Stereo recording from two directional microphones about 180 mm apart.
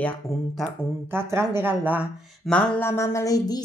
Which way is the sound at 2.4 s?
5° left (ahead or behind).